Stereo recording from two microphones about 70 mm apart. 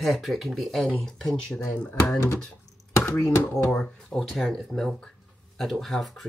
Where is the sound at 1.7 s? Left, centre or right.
Left.